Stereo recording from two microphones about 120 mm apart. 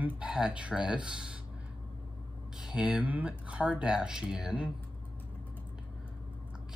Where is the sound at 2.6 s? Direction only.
5° right (ahead or behind).